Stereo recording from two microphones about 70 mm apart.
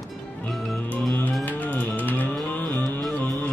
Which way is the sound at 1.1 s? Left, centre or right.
Left.